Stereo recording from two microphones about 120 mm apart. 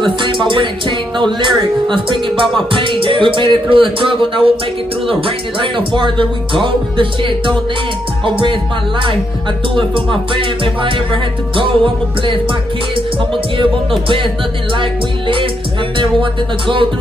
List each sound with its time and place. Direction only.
0.0 s music: 40° right (ahead or behind)
9.8 s music: 45° right (ahead or behind)